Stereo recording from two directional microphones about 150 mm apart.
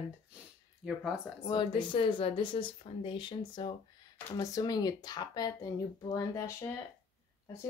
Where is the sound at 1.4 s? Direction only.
30° left (ahead or behind).